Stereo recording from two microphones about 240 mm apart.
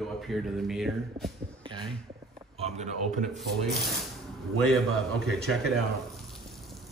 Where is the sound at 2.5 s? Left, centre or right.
Right.